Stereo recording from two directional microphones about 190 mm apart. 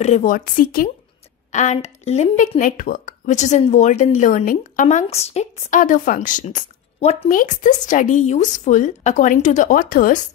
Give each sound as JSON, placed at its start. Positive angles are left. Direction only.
{"t": 0.0, "sound": "a woman's voice", "side_deg": 40}